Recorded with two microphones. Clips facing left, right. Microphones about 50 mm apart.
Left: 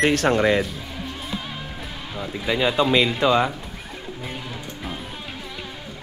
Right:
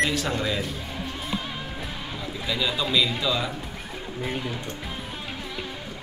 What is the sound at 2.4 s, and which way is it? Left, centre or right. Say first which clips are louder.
Speech: left 7 dB; left.